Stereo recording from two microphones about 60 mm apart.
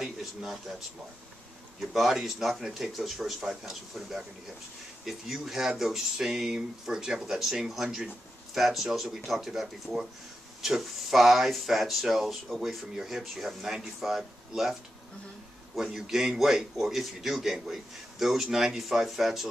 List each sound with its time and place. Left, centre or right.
0.0 s speech: centre